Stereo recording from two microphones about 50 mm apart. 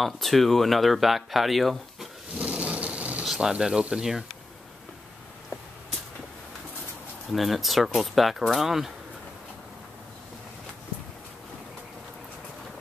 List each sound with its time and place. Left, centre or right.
0.0 s speech: centre
2.3 s a sound: right
3.5 s speech: centre
7.3 s speech: centre